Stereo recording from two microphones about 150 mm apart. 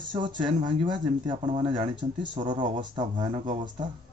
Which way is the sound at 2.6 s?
55° right (ahead or behind).